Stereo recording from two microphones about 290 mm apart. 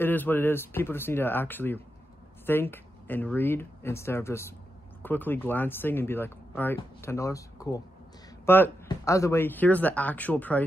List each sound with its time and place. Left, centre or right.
0.0 s speech: centre